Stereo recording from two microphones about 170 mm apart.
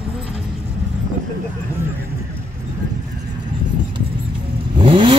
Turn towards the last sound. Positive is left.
turn(degrees=-30)  # may be behind; listen again after turning